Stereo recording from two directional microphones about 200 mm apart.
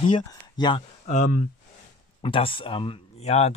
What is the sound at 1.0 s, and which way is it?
Speech, 35° left (ahead or behind).